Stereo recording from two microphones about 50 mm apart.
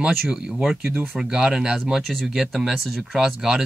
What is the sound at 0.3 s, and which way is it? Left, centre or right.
Speech, centre.